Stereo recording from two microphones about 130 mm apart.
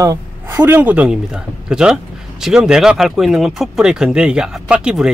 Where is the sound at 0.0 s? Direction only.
25° right (ahead or behind).